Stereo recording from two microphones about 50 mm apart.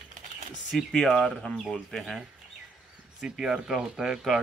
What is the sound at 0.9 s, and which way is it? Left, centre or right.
Speech, centre.